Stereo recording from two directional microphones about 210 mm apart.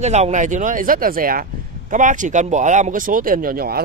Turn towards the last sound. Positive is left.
turn(degrees=-45)  # may be behind; listen again after turning